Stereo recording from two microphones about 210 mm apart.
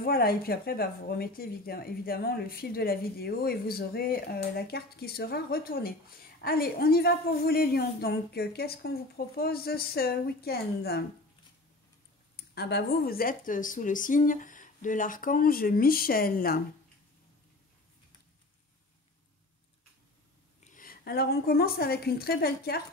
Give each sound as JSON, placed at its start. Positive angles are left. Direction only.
{"t": 0.0, "sound": "a woman's voice", "side_deg": 45}
{"t": 12.5, "sound": "speech", "side_deg": 50}
{"t": 20.6, "sound": "a woman's voice", "side_deg": 40}